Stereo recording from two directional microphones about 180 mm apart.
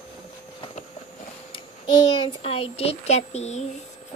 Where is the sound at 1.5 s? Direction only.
25° left (ahead or behind).